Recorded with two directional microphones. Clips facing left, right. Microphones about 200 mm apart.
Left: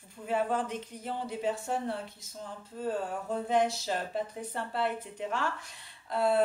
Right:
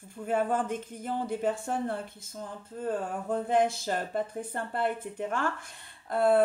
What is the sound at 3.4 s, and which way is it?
Speech, 50° right (ahead or behind).